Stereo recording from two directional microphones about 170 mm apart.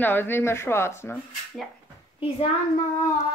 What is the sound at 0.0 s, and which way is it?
Speech, 10° left (ahead or behind).